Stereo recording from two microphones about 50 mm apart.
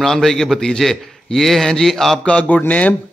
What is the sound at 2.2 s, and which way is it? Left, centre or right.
Speech, centre.